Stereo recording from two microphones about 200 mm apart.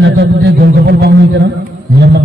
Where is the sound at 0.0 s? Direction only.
60° right (ahead or behind).